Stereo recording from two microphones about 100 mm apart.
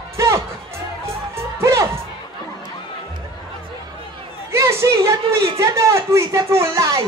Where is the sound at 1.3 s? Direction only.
30° right (ahead or behind).